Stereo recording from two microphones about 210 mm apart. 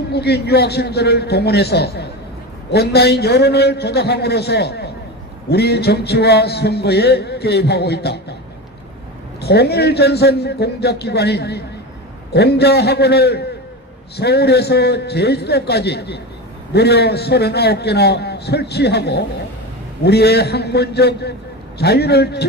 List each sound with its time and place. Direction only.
0.1 s speech: 50° left (ahead or behind)
9.4 s speech: 50° left (ahead or behind)